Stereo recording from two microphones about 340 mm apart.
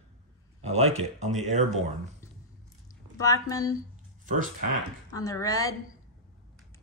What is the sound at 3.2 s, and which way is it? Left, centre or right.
Speech, centre.